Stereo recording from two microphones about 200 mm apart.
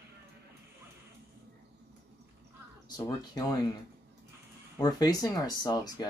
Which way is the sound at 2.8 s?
20° left (ahead or behind).